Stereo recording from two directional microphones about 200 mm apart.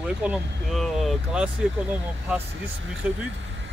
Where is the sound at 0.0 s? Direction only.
5° right (ahead or behind).